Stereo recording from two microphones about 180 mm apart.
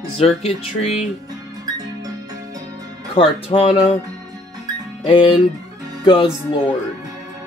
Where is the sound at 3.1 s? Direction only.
30° left (ahead or behind).